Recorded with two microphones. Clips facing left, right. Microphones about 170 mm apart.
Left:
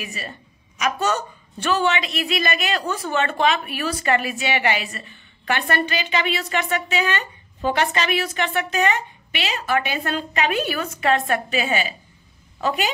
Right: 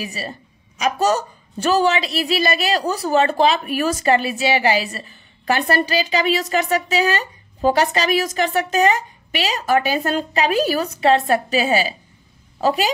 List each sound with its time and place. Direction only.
0.0 s a woman's voice: 35° right (ahead or behind)